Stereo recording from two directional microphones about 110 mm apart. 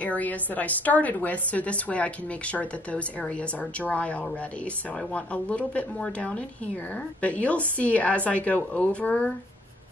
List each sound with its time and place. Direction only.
0.0 s a woman's voice: 15° left (ahead or behind)